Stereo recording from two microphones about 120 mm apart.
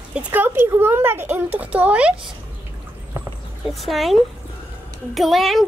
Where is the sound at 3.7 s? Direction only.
Centre (ahead or behind).